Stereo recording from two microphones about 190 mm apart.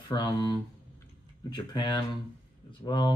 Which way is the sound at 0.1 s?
20° left (ahead or behind).